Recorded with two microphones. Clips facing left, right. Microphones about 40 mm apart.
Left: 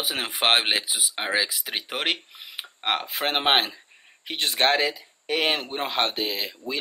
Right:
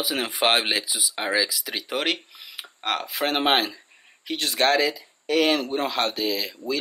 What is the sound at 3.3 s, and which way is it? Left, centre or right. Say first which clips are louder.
Speech: even; centre.